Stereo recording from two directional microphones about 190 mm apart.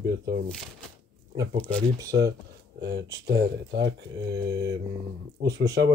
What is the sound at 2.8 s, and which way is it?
Speech, 60° right (ahead or behind).